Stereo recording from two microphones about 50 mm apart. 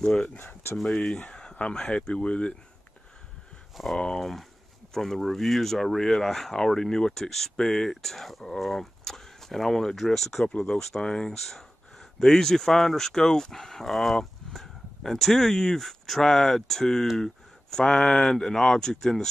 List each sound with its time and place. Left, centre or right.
0.0 s speech: centre
3.7 s speech: centre
10.4 s speech: left
10.7 s speech: centre